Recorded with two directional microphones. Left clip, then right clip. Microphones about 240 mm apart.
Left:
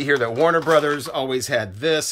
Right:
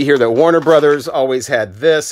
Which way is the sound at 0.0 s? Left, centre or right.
Right.